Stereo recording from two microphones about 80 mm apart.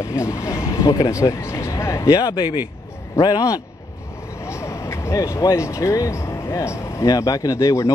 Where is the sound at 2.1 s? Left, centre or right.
Left.